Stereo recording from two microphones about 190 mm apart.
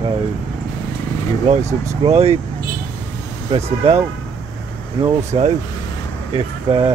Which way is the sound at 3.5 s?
30° right (ahead or behind).